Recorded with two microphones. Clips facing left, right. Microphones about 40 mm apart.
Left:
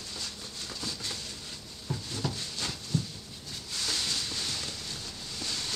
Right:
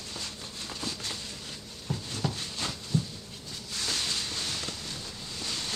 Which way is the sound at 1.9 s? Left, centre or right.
Right.